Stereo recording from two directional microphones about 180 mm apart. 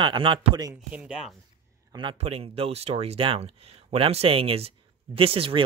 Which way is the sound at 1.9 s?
25° right (ahead or behind).